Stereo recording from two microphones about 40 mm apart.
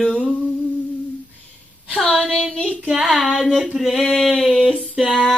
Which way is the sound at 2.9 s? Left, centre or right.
Centre.